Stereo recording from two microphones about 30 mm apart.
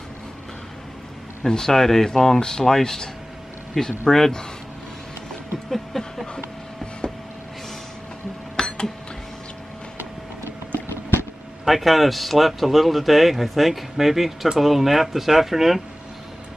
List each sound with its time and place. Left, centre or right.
1.5 s a man's voice: centre
5.7 s a sound: centre
6.3 s vehicle: left
8.5 s cash register: left
11.6 s a man's voice: centre